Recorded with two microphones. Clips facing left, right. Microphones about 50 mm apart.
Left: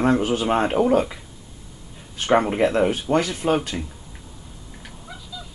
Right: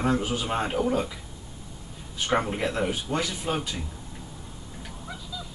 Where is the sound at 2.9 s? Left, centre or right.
Left.